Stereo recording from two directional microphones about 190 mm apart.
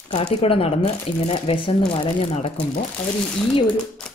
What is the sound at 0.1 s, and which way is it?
Speech, 30° left (ahead or behind).